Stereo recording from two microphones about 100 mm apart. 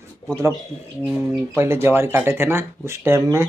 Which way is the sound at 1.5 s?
25° right (ahead or behind).